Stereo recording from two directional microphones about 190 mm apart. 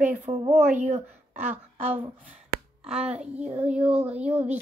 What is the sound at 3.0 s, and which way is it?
A woman's voice, 5° right (ahead or behind).